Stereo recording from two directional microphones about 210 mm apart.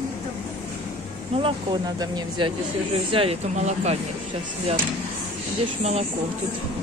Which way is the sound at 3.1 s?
30° right (ahead or behind).